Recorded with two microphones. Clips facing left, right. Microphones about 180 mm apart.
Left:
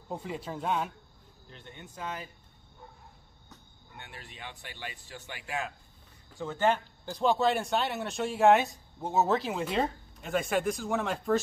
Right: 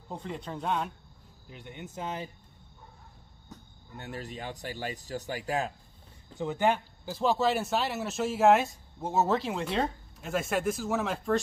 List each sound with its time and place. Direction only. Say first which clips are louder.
0.1 s speech: left 1 dB; 5° left (ahead or behind)
1.5 s speech: right 5 dB; 15° right (ahead or behind)
3.9 s speech: right 10 dB; 40° right (ahead or behind)
6.3 s speech: right 1 dB; 15° right (ahead or behind)
7.1 s speech: even; centre (ahead or behind)